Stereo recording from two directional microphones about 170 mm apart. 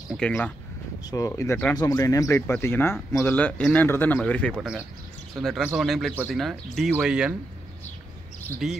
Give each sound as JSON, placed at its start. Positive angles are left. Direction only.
{"t": 0.1, "sound": "speech", "side_deg": 5}
{"t": 1.1, "sound": "speech", "side_deg": 20}
{"t": 4.6, "sound": "speech", "side_deg": -5}
{"t": 8.6, "sound": "speech", "side_deg": 0}